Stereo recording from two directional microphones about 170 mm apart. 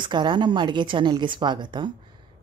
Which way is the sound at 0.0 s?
25° right (ahead or behind).